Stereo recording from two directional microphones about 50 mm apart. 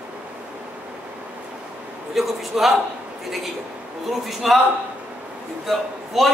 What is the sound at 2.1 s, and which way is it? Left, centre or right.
Speech, centre.